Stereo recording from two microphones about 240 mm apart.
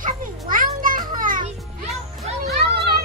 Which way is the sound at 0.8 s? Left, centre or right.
Right.